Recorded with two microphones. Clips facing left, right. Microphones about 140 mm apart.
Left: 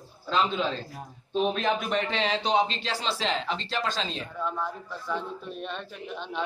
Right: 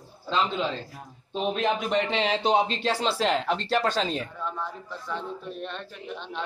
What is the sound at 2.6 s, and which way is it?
Speech, 45° right (ahead or behind).